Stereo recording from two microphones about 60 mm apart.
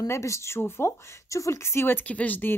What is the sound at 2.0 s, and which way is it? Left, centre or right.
Speech, left.